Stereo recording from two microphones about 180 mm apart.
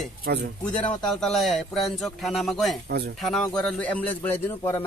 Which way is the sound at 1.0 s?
5° left (ahead or behind).